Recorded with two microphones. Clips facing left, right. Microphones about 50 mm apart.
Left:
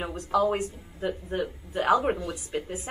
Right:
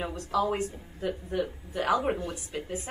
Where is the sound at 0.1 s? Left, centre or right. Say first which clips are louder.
Left 5 dB; left.